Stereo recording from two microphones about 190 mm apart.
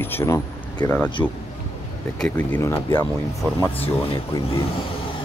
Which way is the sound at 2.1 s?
5° left (ahead or behind).